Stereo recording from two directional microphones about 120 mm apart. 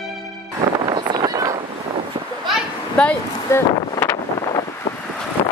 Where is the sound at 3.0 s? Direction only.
10° left (ahead or behind).